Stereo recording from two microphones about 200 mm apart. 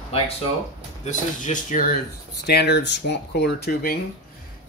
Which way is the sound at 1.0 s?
40° left (ahead or behind).